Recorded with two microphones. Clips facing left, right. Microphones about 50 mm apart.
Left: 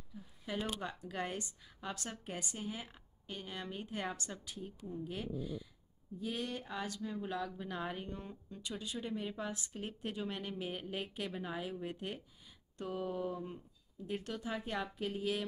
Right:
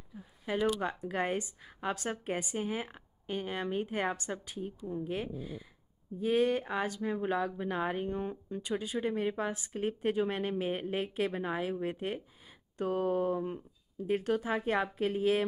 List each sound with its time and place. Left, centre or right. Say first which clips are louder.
0.1 s a sound: right 7 dB; right
0.8 s a woman's voice: right 8 dB; right
12.8 s a woman's voice: right 9 dB; right